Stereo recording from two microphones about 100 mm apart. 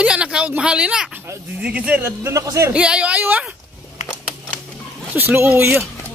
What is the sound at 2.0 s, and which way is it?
Speech, 30° right (ahead or behind).